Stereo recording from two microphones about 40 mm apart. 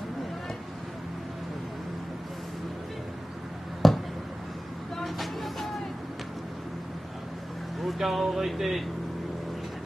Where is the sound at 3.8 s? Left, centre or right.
Centre.